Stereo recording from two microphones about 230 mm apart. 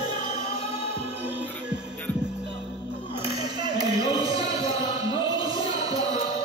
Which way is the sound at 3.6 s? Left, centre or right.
Centre.